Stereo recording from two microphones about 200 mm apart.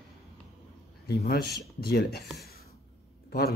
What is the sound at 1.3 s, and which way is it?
Speech, 55° left (ahead or behind).